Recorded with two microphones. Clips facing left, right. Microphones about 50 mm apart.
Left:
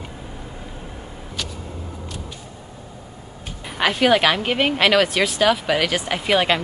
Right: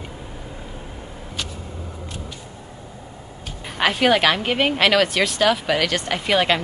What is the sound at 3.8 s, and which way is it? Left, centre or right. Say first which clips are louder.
Speech: left 1 dB; centre.